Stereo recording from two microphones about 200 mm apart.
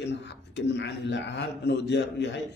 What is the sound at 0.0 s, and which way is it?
Speech, 60° left (ahead or behind).